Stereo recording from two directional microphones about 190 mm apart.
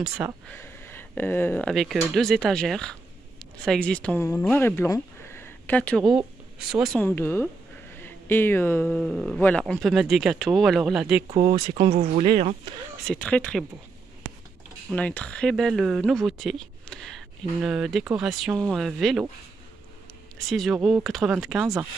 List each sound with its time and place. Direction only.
0.5 s speech: 10° left (ahead or behind); by 11.2 s 5° right (ahead or behind)
11.2 s speech: 25° right (ahead or behind)
13.0 s speech: 5° left (ahead or behind)
14.9 s speech: 5° left (ahead or behind)
20.3 s speech: centre (ahead or behind)